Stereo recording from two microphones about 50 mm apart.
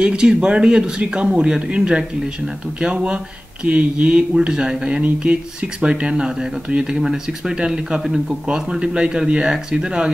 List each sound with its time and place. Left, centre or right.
0.0 s speech: centre
4.5 s speech: centre